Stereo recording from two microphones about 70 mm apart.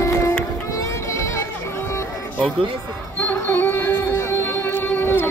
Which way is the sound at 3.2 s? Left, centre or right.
Left.